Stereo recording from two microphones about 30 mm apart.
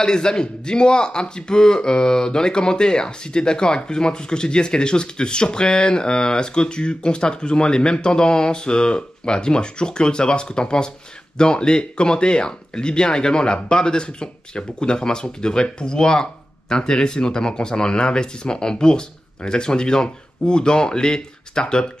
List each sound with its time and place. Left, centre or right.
0.0 s speech: left